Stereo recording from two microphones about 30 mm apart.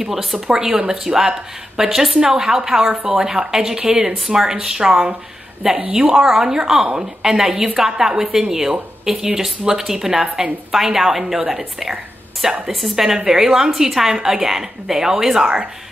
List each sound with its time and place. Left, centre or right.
0.0 s a woman's voice: centre
0.5 s a woman's voice: right